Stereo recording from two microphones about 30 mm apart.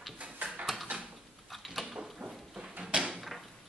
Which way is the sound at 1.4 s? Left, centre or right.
Centre.